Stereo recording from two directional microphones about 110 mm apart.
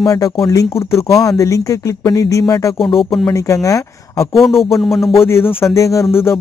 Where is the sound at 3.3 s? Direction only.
30° left (ahead or behind).